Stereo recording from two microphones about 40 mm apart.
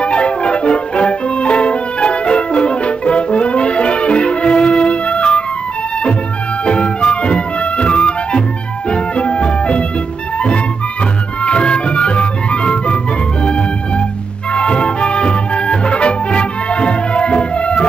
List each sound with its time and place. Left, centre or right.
0.0 s music: left
6.6 s music: left
11.4 s music: left
14.5 s music: left